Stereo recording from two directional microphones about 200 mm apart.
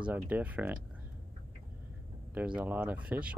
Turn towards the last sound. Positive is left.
turn(degrees=-5)  # may be behind; listen again after turning